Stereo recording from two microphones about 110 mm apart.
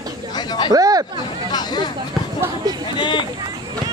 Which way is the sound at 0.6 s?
35° right (ahead or behind).